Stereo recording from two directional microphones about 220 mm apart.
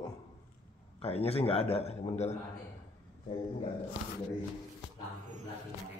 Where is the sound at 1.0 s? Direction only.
25° left (ahead or behind).